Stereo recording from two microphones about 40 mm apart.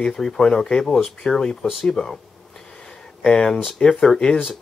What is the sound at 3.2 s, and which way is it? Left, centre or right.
Speech, centre.